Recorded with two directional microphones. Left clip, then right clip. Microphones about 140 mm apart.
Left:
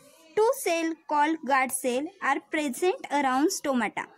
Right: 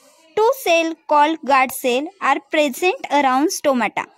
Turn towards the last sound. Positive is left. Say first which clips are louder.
# right 10 dB
turn(degrees=-40)  # may be behind; listen again after turning